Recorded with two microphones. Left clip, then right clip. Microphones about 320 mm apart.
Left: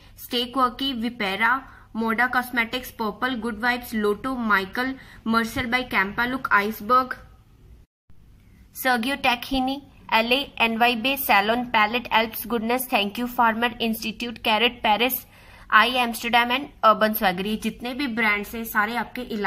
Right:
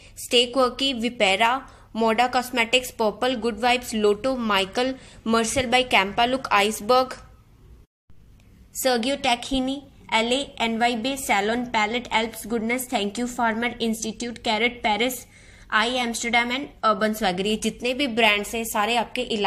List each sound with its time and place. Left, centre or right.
0.3 s a woman's voice: centre
8.8 s a woman's voice: centre